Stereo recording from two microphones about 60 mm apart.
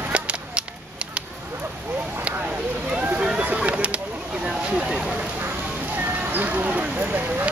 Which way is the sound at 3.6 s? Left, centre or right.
Centre.